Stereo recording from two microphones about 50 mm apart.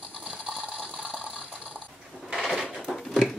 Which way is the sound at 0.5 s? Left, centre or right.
Right.